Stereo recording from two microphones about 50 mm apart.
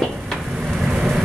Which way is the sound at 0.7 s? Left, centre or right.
Centre.